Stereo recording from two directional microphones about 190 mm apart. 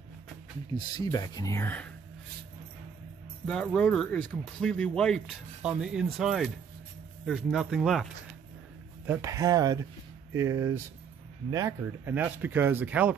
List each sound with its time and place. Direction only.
0.7 s speech: 20° left (ahead or behind)
3.4 s speech: 5° left (ahead or behind)
9.0 s speech: 10° right (ahead or behind)